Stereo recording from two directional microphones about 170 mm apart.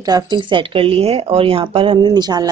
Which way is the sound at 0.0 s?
25° right (ahead or behind).